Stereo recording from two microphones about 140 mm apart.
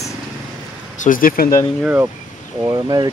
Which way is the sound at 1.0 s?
80° left.